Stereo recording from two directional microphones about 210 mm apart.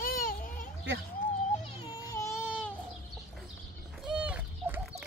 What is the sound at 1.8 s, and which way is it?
Baby cry, 20° left (ahead or behind).